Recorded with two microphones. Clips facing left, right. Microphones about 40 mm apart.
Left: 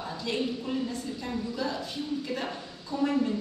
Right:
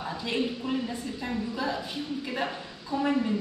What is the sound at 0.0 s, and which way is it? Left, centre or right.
A woman's voice, centre.